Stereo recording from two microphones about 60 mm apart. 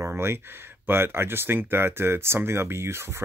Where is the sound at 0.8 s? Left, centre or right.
Right.